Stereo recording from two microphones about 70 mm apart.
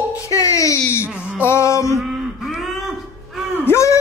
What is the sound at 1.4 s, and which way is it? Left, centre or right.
Speech, left.